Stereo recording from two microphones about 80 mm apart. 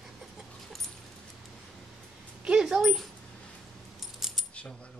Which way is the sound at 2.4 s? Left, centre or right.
Centre.